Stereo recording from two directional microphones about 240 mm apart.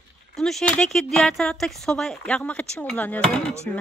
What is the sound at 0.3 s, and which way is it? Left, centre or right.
Speech, centre.